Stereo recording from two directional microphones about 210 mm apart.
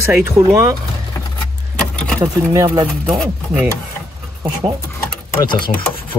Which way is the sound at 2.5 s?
15° right (ahead or behind).